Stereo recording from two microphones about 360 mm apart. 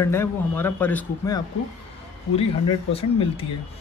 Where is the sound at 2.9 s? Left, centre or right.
Centre.